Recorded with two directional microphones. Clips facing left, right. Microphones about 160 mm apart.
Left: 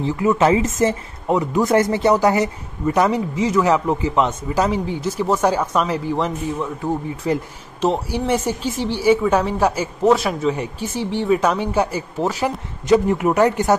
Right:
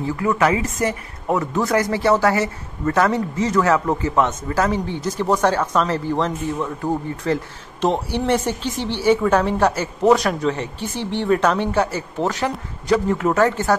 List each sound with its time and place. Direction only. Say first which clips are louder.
0.0 s speech: left 2 dB; 25° left (ahead or behind); by 3.6 s 5° left (ahead or behind)
3.6 s a woman's voice: left 1 dB; 15° left (ahead or behind)
12.8 s speech: left 3 dB; 20° left (ahead or behind)